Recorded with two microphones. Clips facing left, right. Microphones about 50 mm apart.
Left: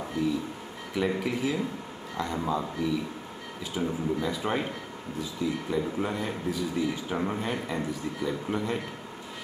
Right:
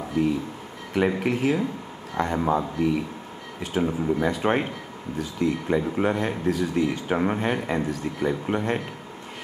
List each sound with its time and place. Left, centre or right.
0.9 s speech: right
3.7 s speech: right
7.2 s speech: right